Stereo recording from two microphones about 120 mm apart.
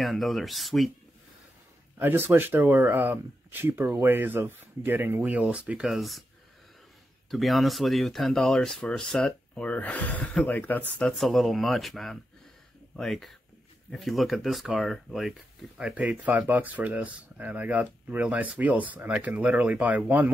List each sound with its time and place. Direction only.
0.0 s speech: centre (ahead or behind)
2.0 s speech: 15° right (ahead or behind); by 6.2 s centre (ahead or behind)
7.2 s speech: centre (ahead or behind)
15.8 s speech: 10° right (ahead or behind)